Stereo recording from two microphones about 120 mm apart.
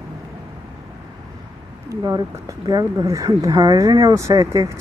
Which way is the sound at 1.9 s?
30° right (ahead or behind).